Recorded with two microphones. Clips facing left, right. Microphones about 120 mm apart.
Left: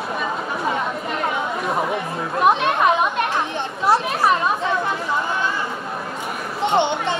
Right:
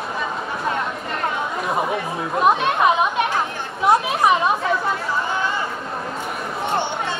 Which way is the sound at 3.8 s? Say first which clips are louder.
Right 1 dB; 20° right (ahead or behind).